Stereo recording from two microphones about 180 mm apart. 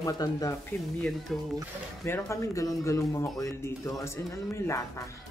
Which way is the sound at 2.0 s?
15° left (ahead or behind).